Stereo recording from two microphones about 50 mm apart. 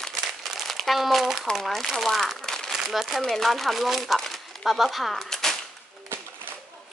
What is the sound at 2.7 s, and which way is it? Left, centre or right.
Speech, centre.